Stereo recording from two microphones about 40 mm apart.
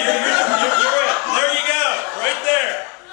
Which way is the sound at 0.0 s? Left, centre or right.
Centre.